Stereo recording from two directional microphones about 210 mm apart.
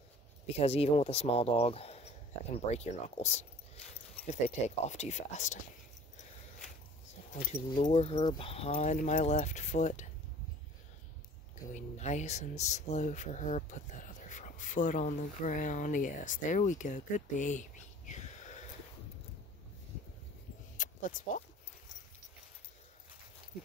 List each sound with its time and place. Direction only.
0.5 s speech: 30° left (ahead or behind)
7.3 s speech: 30° left (ahead or behind)
11.7 s speech: 35° left (ahead or behind)
20.7 s a sound: 40° left (ahead or behind)